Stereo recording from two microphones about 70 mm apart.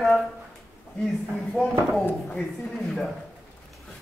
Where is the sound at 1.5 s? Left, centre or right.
Centre.